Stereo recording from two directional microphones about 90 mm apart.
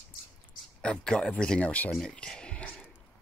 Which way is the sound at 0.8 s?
10° left (ahead or behind).